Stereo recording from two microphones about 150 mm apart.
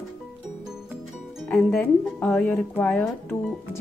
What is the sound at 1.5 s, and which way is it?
Speech, 5° left (ahead or behind).